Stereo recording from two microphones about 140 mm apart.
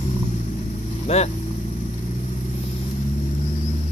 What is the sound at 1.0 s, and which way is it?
Speech, 50° left (ahead or behind).